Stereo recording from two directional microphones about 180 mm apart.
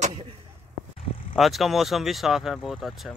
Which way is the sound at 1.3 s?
Centre (ahead or behind).